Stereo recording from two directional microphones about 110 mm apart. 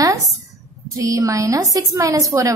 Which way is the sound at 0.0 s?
30° right (ahead or behind).